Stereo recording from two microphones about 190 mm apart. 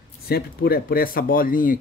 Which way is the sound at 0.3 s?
55° left (ahead or behind).